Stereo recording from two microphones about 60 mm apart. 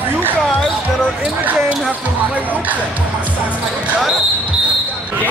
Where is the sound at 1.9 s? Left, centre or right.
Right.